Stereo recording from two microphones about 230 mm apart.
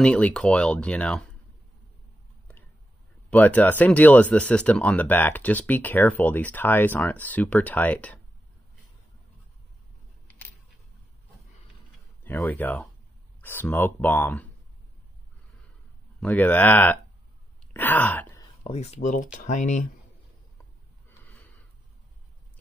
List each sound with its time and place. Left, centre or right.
0.0 s speech: centre
3.3 s speech: centre
12.2 s speech: centre
16.2 s speech: centre
17.7 s a sound: centre
18.6 s speech: left